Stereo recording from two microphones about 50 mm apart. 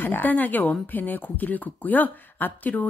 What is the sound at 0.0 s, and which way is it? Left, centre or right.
Speech, left.